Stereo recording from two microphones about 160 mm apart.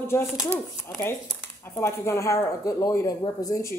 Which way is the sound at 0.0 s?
15° left (ahead or behind).